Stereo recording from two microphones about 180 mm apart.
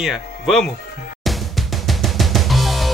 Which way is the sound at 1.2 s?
Centre (ahead or behind).